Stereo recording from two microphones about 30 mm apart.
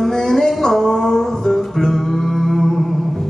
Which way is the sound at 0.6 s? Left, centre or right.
Centre.